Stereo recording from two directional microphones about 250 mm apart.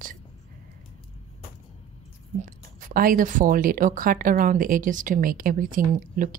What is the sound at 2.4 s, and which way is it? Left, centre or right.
Speech, right.